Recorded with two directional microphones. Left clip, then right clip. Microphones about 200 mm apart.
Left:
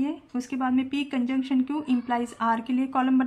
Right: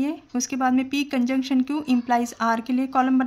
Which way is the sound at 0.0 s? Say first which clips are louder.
Right 4 dB; 30° right (ahead or behind).